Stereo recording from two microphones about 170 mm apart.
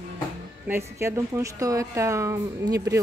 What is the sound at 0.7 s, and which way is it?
A woman's voice, 15° right (ahead or behind).